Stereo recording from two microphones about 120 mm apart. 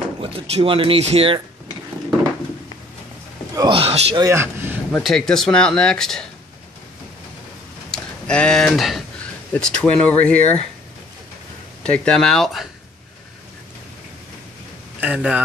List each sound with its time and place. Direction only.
0.2 s speech: 55° right (ahead or behind)
3.5 s speech: 40° right (ahead or behind)
3.8 s speech: 55° right (ahead or behind)
4.2 s speech: 20° right (ahead or behind)
5.0 s speech: 5° left (ahead or behind)
7.9 s speech: 10° left (ahead or behind)
11.8 s speech: 10° left (ahead or behind)
15.0 s speech: 10° right (ahead or behind)